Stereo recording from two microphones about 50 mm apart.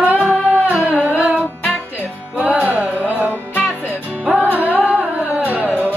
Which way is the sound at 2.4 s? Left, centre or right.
Right.